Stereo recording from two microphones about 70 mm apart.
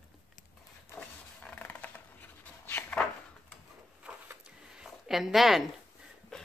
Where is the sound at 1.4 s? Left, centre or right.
Left.